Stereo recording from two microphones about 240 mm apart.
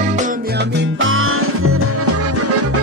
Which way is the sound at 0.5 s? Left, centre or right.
Right.